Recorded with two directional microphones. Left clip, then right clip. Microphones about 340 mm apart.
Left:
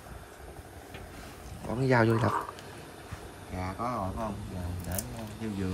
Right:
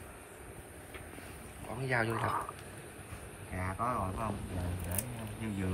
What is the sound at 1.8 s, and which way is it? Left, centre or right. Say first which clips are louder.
Speech: left 7 dB; left.